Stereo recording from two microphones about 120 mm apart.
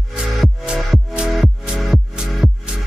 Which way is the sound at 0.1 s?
5° right (ahead or behind).